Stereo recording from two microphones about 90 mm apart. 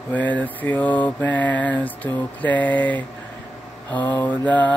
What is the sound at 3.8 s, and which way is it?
Mantra, 20° left (ahead or behind).